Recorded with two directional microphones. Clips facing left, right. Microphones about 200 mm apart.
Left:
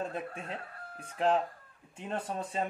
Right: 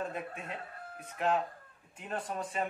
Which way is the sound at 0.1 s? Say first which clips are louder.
Left 2 dB; 30° left (ahead or behind).